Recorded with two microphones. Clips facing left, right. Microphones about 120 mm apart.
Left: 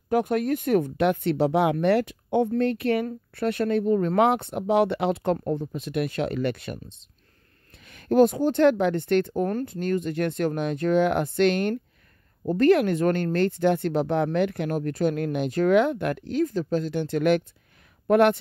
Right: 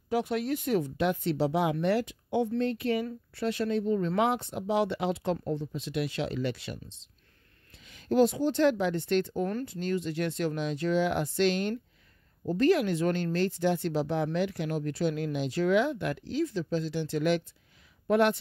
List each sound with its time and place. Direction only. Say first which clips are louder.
0.1 s speech: left 6 dB; 50° left (ahead or behind)